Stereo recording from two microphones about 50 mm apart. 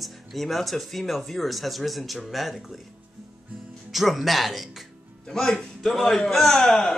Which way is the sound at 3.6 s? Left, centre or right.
Centre.